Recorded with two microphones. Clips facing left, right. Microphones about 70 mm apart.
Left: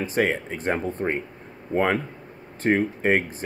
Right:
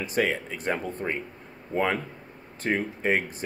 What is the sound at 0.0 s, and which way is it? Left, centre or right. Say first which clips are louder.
A man's voice: left 3 dB; left.